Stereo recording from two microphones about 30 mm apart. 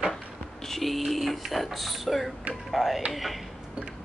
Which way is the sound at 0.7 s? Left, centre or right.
Centre.